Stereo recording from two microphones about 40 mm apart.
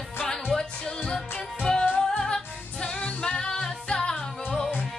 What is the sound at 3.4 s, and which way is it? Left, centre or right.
Singing, centre.